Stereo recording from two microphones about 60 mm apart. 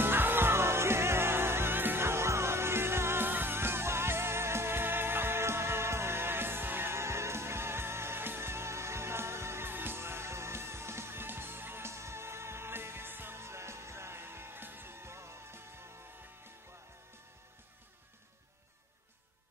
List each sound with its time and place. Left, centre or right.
0.0 s music: right